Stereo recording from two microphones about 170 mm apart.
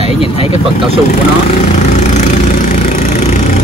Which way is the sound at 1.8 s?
45° left (ahead or behind).